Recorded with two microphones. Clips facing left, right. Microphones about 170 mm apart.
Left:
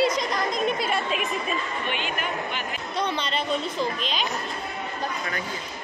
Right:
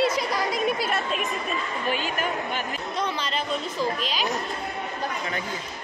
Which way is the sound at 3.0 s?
5° right (ahead or behind).